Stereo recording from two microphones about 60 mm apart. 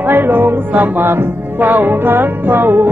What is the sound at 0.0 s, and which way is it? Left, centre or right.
Music, right.